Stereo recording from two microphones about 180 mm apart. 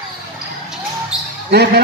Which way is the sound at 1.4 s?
65° right (ahead or behind).